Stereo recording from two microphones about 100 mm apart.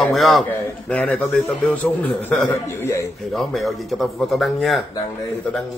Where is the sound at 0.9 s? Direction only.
15° left (ahead or behind).